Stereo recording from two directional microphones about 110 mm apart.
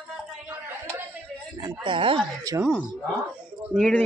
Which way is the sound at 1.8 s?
50° right (ahead or behind).